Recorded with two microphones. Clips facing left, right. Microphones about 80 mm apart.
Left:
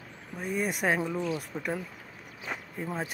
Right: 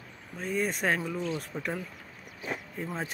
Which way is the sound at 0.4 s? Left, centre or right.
Centre.